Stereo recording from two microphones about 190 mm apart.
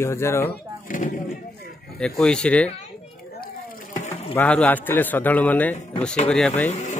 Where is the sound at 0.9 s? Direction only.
45° left (ahead or behind).